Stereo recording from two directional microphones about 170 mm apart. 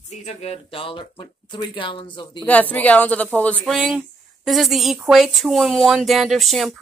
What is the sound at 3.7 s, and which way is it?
Speech, 5° right (ahead or behind).